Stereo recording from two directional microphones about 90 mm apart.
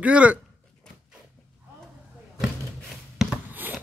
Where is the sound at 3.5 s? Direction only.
20° right (ahead or behind).